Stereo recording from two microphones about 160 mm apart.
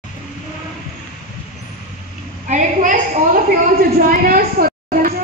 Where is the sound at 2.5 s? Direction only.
50° right (ahead or behind).